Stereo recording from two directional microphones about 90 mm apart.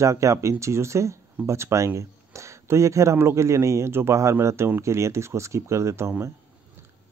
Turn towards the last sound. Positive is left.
turn(degrees=-30)  # may be behind; listen again after turning